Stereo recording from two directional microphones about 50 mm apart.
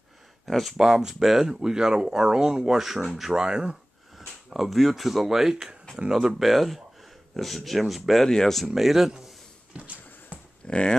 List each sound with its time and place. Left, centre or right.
0.5 s speech: centre
3.3 s speech: centre
4.5 s speech: centre
6.4 s speech: centre
8.3 s speech: centre
8.6 s speech: centre
9.8 s a sound: right
10.6 s speech: centre